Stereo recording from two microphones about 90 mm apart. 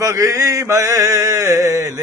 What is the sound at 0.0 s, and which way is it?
Chant, 35° right (ahead or behind).